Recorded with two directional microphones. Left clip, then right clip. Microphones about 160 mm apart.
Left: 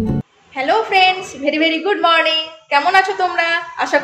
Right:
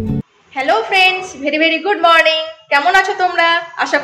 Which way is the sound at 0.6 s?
10° right (ahead or behind).